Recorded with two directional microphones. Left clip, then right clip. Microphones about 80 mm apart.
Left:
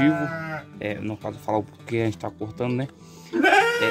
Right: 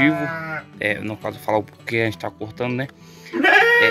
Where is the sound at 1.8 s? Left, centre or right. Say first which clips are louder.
Right 4 dB; centre.